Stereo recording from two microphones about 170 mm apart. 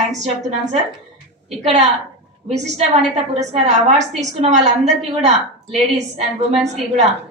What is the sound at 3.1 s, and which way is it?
A woman's voice, 40° right (ahead or behind).